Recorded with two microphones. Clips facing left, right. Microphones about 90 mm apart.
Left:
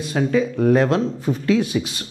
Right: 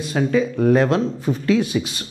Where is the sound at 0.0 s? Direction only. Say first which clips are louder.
Even; 15° right (ahead or behind).